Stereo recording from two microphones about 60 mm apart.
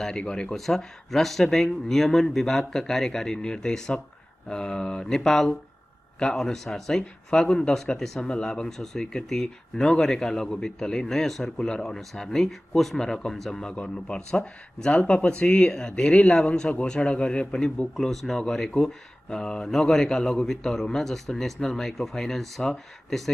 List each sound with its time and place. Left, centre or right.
0.0 s speech: centre
17.9 s speech: centre